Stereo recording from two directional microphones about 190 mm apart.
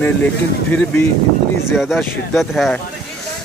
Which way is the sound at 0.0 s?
10° left (ahead or behind).